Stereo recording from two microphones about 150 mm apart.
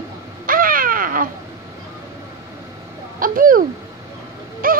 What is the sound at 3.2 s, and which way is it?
Speech, 70° right (ahead or behind).